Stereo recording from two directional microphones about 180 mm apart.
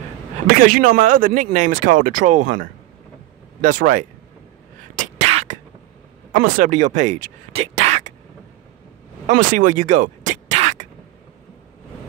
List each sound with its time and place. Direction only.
0.6 s speech: 50° right (ahead or behind)
5.3 s beatboxing: 40° right (ahead or behind)
6.3 s speech: 45° right (ahead or behind)
9.3 s speech: 45° right (ahead or behind)